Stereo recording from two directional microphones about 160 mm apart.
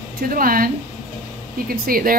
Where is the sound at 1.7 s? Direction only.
65° right (ahead or behind).